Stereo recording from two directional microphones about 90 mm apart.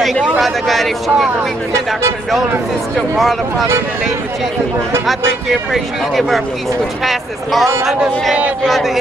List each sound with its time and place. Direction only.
0.4 s speech: centre (ahead or behind)
3.2 s speech: centre (ahead or behind)
5.0 s speech: centre (ahead or behind)
7.8 s speech: centre (ahead or behind)